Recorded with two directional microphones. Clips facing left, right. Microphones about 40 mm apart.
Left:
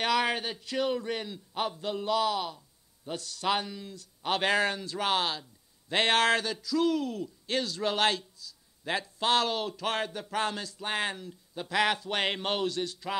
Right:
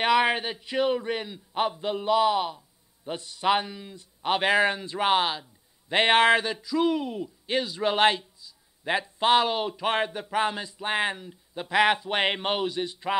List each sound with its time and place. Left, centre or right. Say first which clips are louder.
0.0 s a man's voice: right 5 dB; right